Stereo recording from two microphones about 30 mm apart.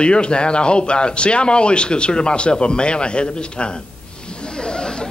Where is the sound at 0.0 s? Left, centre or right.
Left.